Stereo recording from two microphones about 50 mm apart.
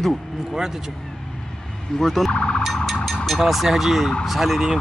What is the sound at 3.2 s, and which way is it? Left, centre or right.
A man's voice, centre.